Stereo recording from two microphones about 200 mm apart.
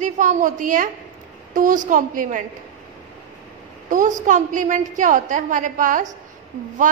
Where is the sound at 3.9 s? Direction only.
40° right (ahead or behind).